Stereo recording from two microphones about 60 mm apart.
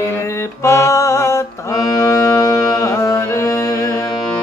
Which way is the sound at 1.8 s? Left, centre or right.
Left.